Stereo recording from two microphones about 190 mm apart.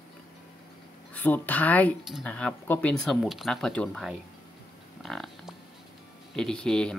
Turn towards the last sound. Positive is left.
turn(degrees=5)  # may be behind; listen again after turning